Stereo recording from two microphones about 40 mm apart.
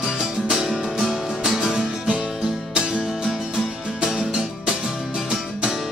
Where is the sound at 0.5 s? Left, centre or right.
Centre.